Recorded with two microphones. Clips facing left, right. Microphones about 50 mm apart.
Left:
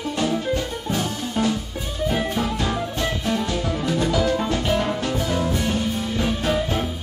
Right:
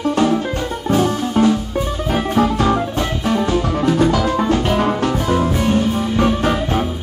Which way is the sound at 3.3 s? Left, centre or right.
Right.